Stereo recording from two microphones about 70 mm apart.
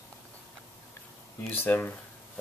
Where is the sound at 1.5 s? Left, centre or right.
Left.